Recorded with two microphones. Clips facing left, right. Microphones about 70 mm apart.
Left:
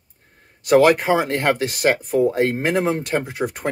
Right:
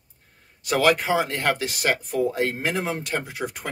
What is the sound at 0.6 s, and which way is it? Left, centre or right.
Speech, left.